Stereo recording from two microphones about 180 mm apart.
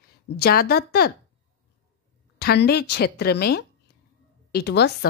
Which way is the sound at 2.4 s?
65° left (ahead or behind).